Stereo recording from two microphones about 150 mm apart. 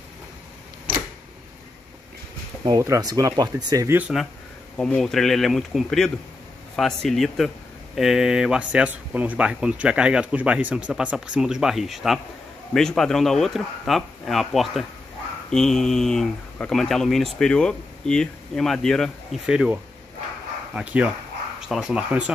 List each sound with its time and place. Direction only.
2.7 s speech: 25° right (ahead or behind)
4.1 s speech: centre (ahead or behind)